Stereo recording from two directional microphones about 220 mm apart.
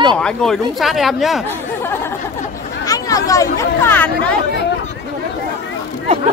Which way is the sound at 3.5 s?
10° left (ahead or behind).